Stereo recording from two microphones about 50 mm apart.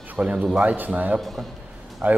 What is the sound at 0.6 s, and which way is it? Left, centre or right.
Speech, right.